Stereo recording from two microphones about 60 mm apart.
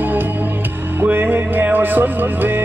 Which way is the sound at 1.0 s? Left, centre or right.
Right.